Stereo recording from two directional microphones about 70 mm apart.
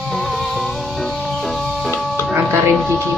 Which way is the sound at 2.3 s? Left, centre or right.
Right.